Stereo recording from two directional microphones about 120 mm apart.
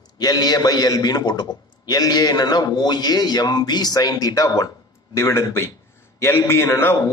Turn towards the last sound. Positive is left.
turn(degrees=20)  # may be behind; listen again after turning